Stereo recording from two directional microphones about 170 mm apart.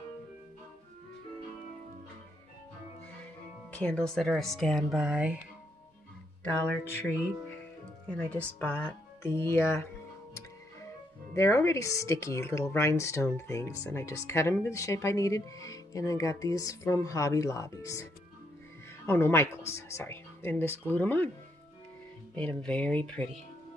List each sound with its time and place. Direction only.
3.7 s speech: 5° left (ahead or behind)
6.6 s speech: 10° left (ahead or behind)
8.1 s speech: 5° left (ahead or behind)
11.3 s speech: 15° left (ahead or behind)
19.0 s speech: 15° left (ahead or behind)
22.3 s speech: 5° left (ahead or behind)